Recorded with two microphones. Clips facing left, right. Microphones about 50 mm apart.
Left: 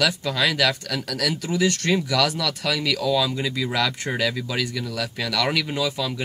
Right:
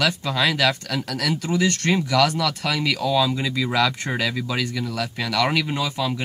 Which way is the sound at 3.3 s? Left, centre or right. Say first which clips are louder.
Right 2 dB; centre.